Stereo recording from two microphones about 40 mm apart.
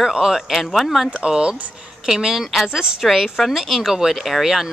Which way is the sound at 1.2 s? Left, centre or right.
Right.